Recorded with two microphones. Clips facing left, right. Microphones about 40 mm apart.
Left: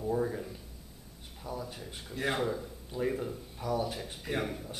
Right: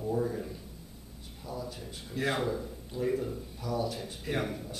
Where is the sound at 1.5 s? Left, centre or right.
Left.